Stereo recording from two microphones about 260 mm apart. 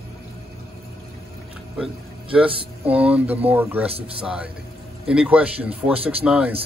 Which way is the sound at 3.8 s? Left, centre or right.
Right.